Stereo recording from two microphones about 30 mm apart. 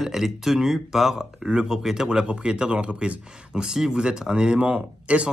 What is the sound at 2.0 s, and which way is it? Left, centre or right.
Speech, right.